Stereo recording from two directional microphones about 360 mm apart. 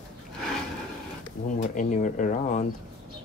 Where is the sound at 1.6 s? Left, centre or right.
Left.